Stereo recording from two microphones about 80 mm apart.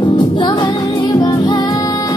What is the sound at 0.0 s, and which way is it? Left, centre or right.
Music, left.